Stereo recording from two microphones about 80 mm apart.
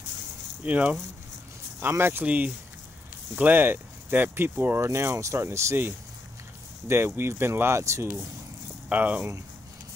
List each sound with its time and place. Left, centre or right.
0.7 s speech: centre; by 5.9 s right
6.9 s speech: right
8.8 s speech: centre